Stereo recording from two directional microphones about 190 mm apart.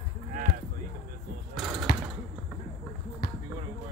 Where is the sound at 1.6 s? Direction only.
5° right (ahead or behind).